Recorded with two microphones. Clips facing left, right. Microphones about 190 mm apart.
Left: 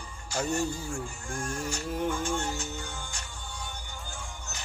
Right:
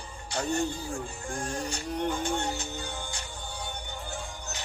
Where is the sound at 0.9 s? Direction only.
35° right (ahead or behind).